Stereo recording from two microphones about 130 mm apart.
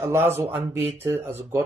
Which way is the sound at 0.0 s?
20° right (ahead or behind).